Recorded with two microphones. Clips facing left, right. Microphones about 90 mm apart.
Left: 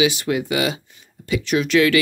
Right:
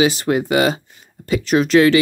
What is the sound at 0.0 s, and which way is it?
Speech, 40° right (ahead or behind).